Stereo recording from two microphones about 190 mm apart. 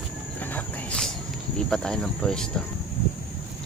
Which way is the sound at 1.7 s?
5° left (ahead or behind).